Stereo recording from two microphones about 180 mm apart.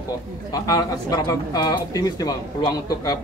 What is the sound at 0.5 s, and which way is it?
Speech, 20° left (ahead or behind).